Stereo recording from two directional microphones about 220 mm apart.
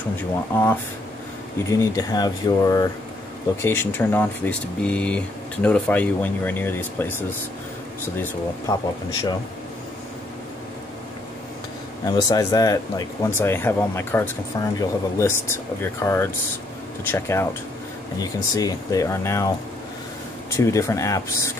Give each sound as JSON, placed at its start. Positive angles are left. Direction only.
{"t": 0.5, "sound": "speech", "side_deg": 10}
{"t": 12.1, "sound": "speech", "side_deg": 15}
{"t": 20.5, "sound": "speech", "side_deg": 15}